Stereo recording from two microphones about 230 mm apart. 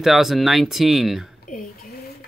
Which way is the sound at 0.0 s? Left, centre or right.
Centre.